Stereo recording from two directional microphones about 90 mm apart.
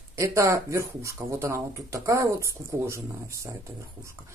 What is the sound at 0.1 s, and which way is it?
Speech, 35° right (ahead or behind).